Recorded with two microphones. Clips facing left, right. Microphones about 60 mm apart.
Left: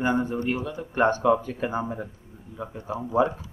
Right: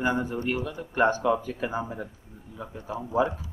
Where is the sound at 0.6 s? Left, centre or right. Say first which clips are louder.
Even; centre.